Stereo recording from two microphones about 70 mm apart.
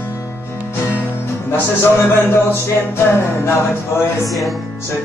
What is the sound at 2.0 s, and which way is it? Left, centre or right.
Music, left.